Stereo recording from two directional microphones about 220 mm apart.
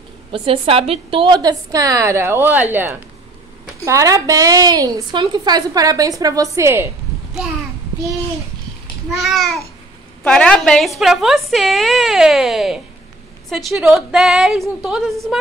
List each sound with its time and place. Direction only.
0.3 s a woman's voice: 25° right (ahead or behind)
9.1 s a woman's voice: centre (ahead or behind)